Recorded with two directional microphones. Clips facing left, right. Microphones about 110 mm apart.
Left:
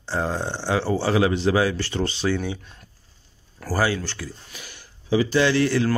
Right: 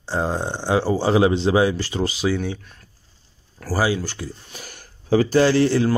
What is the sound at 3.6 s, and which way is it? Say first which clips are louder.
Speech: right 2 dB; 10° right (ahead or behind).